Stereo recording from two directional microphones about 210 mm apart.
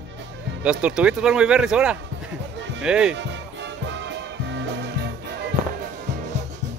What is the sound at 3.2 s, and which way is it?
Music, 55° right (ahead or behind).